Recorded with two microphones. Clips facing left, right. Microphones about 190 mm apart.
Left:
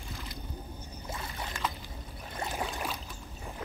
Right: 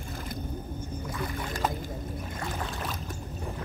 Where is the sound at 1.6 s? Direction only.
50° right (ahead or behind).